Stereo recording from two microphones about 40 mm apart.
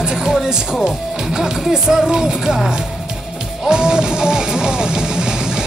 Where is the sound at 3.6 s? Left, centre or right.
Centre.